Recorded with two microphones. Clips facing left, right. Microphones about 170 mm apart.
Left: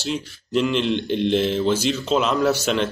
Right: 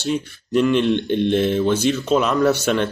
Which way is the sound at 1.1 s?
55° right (ahead or behind).